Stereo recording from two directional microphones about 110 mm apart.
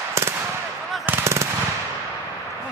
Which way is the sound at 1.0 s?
25° right (ahead or behind).